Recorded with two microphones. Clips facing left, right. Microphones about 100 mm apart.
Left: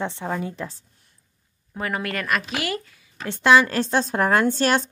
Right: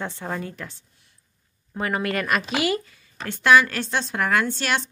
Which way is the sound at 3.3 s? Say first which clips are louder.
Left 1 dB; 25° left (ahead or behind).